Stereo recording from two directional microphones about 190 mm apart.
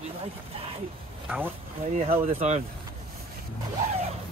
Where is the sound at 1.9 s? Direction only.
40° right (ahead or behind).